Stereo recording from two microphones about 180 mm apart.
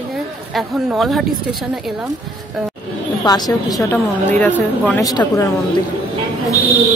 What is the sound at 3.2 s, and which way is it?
Speech, 20° left (ahead or behind).